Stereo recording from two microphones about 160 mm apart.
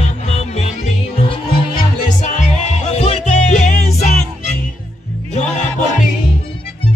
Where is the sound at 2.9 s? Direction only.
40° left (ahead or behind).